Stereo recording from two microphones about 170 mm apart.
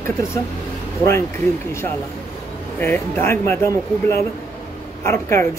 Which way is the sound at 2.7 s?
10° left (ahead or behind).